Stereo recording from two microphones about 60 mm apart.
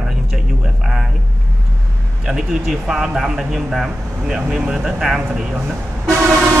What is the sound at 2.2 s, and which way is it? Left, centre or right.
A man's voice, centre.